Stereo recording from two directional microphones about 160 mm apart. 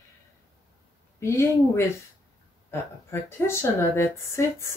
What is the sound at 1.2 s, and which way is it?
Speech, 15° left (ahead or behind).